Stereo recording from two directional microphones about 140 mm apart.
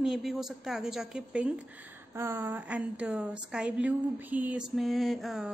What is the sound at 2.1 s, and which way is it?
Speech, 15° right (ahead or behind).